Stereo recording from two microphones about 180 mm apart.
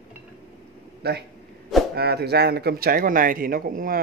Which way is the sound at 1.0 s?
65° right (ahead or behind).